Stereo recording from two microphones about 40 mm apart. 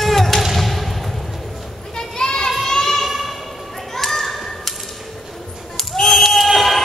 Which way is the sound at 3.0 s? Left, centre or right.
Centre.